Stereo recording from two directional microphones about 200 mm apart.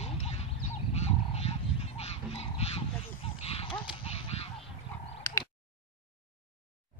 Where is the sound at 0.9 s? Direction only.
30° left (ahead or behind).